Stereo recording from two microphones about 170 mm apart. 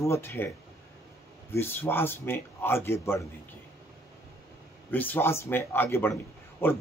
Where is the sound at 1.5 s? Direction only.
15° left (ahead or behind).